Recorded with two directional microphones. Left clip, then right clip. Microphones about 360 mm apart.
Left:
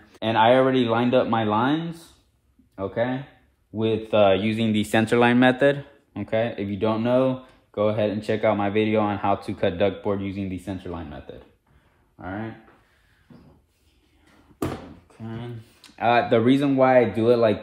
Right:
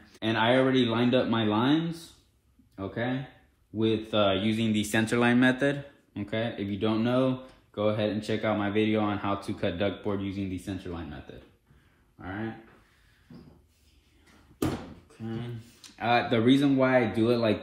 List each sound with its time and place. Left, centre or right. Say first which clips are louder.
0.1 s speech: left 7 dB; left
12.2 s speech: left 4 dB; left
15.2 s speech: left 2 dB; left